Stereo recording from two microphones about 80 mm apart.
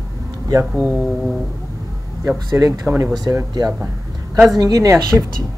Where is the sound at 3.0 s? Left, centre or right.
Right.